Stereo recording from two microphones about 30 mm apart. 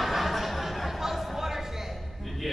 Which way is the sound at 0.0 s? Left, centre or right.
Centre.